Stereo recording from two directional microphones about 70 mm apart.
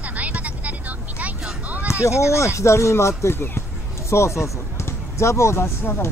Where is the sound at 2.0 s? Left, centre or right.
Left.